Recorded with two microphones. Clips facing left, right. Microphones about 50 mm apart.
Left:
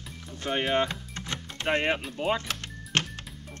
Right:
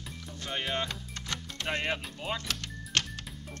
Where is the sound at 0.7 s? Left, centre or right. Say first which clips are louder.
Left 7 dB; left.